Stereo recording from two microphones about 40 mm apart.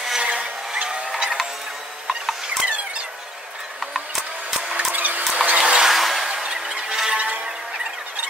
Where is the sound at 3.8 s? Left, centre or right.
Centre.